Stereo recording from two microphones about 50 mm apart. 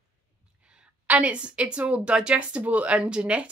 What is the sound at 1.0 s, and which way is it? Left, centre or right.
A woman's voice, right.